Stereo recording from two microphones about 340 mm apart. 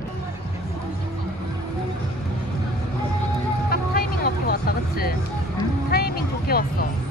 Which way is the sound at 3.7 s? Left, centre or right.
Left.